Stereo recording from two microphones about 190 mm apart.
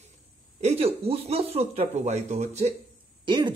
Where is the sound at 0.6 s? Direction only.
30° right (ahead or behind).